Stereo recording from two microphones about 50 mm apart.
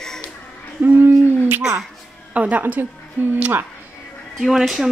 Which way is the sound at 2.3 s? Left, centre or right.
Right.